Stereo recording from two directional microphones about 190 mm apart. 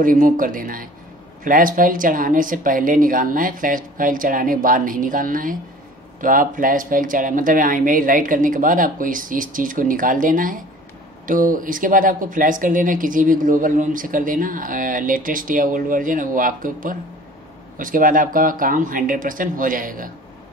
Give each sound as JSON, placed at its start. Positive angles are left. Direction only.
{"t": 0.0, "sound": "speech", "side_deg": -45}